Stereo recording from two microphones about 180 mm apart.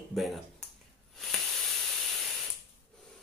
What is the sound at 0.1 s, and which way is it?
Speech, centre (ahead or behind).